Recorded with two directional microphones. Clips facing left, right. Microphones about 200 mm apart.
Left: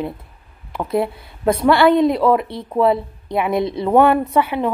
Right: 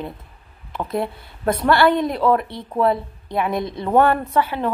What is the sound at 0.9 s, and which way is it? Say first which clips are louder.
Speech: left 5 dB; 5° left (ahead or behind).